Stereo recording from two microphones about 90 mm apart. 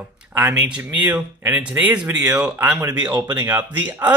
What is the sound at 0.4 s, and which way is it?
Speech, 15° right (ahead or behind).